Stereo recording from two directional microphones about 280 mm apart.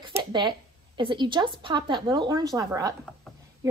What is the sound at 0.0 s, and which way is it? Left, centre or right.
A woman's voice, centre.